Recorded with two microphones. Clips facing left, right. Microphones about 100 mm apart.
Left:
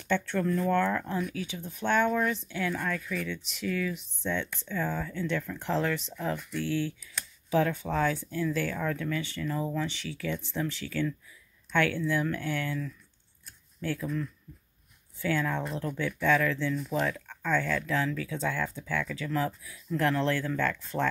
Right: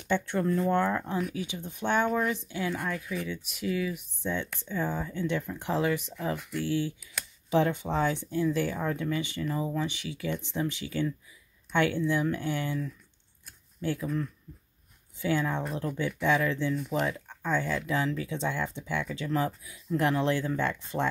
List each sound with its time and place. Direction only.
0.0 s speech: 15° right (ahead or behind)
15.1 s speech: 15° right (ahead or behind)